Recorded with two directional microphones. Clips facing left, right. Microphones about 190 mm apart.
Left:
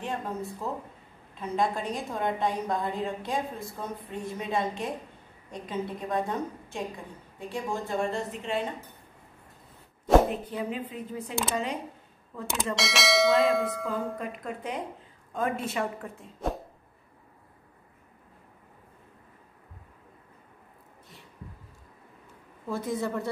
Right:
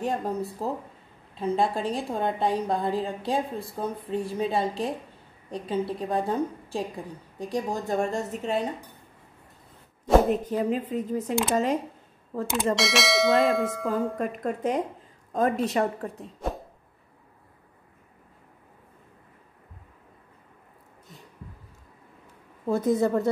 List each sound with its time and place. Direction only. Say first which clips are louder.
0.0 s a woman's voice: right 5 dB; 40° right (ahead or behind)
10.4 s a woman's voice: right 6 dB; 40° right (ahead or behind)
12.7 s bell: left 2 dB; centre (ahead or behind)
14.1 s a woman's voice: right 6 dB; 45° right (ahead or behind)
22.7 s a woman's voice: right 8 dB; 45° right (ahead or behind)